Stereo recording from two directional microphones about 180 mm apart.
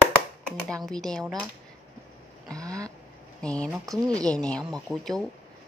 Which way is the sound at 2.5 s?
20° right (ahead or behind).